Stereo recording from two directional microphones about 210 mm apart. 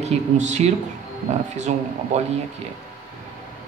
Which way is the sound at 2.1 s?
35° right (ahead or behind).